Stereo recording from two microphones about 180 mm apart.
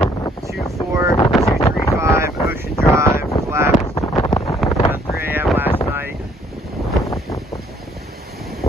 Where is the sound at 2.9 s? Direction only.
15° right (ahead or behind).